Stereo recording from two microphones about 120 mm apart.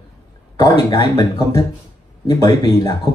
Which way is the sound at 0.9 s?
35° left (ahead or behind).